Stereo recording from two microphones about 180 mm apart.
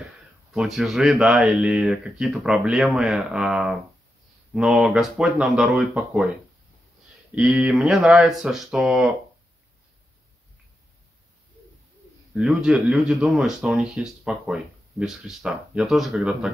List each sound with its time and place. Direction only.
0.5 s speech: centre (ahead or behind)
7.3 s speech: 5° right (ahead or behind)
12.4 s speech: 5° right (ahead or behind)